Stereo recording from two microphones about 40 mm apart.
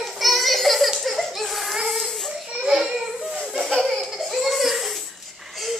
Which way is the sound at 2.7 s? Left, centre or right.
Centre.